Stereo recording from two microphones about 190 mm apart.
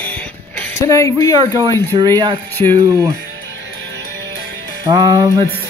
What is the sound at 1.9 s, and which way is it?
Speech, 20° right (ahead or behind).